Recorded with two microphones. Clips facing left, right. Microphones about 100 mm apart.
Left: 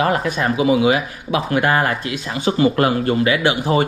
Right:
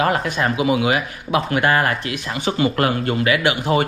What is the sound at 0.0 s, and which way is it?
Speech, 35° left (ahead or behind).